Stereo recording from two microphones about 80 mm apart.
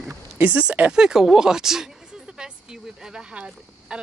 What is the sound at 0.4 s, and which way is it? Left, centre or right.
Speech, centre.